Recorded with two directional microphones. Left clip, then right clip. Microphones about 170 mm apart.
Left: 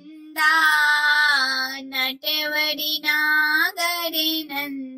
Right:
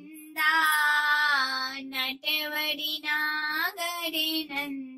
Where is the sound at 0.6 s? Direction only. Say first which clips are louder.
Left 5 dB; 25° left (ahead or behind).